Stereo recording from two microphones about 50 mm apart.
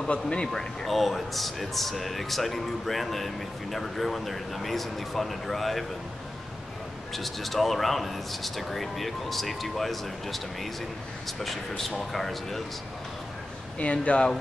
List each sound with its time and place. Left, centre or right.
0.1 s speech: centre
7.2 s speech: centre
13.7 s speech: left